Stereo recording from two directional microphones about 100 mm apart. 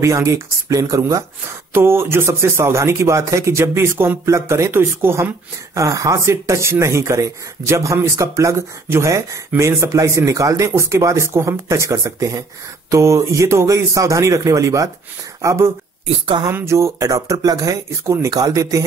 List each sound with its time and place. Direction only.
0.0 s speech: 30° right (ahead or behind)
1.7 s speech: 25° right (ahead or behind)